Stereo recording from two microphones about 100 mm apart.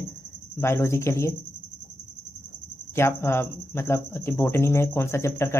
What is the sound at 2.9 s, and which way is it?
Speech, 25° left (ahead or behind).